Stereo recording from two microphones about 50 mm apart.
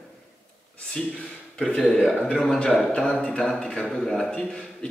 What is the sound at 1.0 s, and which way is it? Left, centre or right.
Speech, centre.